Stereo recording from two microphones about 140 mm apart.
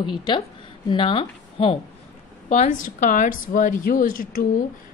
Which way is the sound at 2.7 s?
70° left (ahead or behind).